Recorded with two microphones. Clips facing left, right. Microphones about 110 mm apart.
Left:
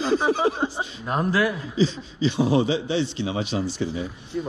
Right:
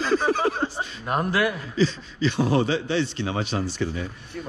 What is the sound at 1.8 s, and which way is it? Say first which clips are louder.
A man's voice: even; 60° right (ahead or behind).